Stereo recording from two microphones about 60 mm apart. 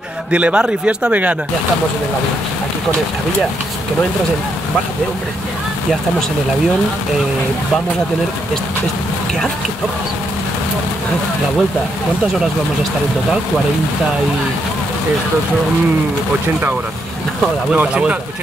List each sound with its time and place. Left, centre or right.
0.3 s speech: right
17.7 s speech: centre